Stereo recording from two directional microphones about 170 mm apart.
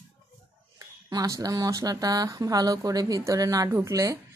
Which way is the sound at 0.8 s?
20° right (ahead or behind).